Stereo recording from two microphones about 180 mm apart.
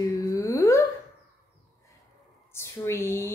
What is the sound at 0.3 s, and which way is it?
Humming, 20° left (ahead or behind).